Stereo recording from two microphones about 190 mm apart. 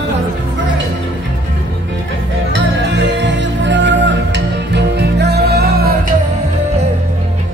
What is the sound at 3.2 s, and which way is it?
Music, 70° right (ahead or behind).